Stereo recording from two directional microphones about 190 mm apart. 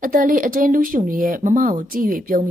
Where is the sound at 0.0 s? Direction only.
45° right (ahead or behind).